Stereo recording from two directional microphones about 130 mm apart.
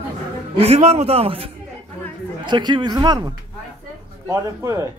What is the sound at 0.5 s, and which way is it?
Speech, 55° right (ahead or behind).